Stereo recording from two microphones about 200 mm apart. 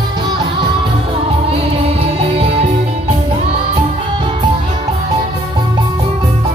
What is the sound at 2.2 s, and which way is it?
Music, 30° right (ahead or behind).